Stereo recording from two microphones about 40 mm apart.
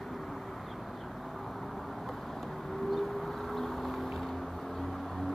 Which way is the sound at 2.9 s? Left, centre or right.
Centre.